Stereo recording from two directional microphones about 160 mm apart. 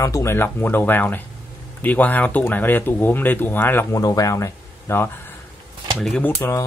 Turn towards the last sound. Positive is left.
turn(degrees=10)  # may be behind; listen again after turning